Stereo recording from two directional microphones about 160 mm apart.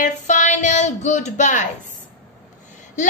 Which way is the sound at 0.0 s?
50° left (ahead or behind).